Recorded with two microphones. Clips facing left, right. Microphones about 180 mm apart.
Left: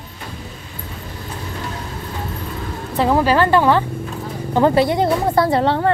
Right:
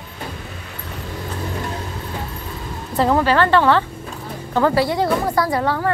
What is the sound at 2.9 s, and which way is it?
Speech, centre (ahead or behind).